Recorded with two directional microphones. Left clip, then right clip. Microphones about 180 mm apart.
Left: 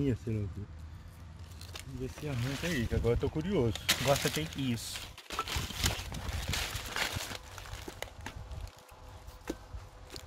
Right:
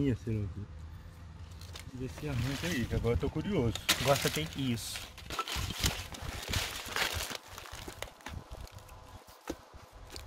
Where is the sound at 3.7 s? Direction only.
5° right (ahead or behind).